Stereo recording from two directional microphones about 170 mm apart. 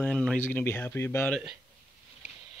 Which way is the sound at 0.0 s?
5° left (ahead or behind).